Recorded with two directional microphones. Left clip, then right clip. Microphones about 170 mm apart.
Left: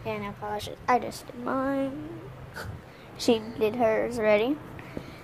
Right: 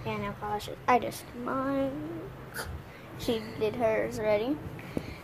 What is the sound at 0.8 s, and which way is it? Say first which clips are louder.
Speech: left 1 dB; 15° left (ahead or behind).